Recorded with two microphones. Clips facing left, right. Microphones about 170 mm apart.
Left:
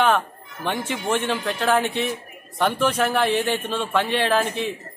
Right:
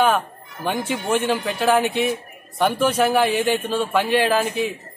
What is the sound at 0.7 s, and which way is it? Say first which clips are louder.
A man's voice: right 2 dB; 10° right (ahead or behind).